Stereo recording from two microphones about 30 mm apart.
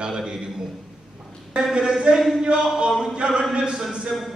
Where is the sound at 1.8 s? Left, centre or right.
Right.